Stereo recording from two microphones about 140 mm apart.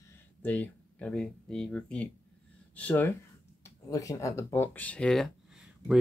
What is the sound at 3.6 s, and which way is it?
Speech, 25° left (ahead or behind).